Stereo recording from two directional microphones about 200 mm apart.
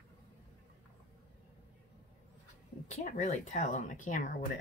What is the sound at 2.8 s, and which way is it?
Speech, 35° left (ahead or behind).